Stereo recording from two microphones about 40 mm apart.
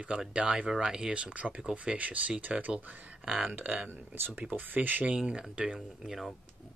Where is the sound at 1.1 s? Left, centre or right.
Right.